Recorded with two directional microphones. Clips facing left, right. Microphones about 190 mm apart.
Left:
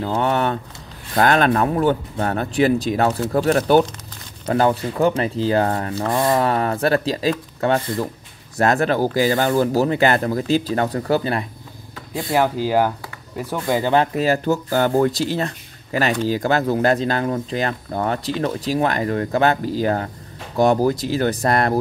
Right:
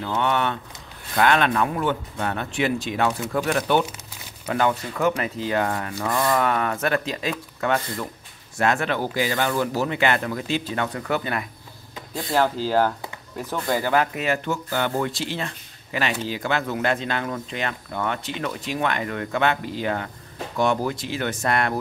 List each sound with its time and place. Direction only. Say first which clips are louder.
0.0 s speech: left 4 dB; 35° left (ahead or behind)
12.3 s speech: left 3 dB; 10° left (ahead or behind)
14.1 s speech: left 6 dB; 35° left (ahead or behind)